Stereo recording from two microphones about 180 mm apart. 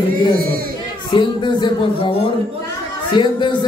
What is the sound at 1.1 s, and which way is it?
A man's voice, 25° left (ahead or behind).